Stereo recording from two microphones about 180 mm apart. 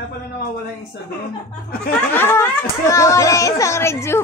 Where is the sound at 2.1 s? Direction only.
10° left (ahead or behind).